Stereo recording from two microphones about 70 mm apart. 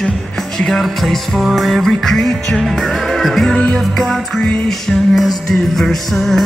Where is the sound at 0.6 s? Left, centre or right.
Centre.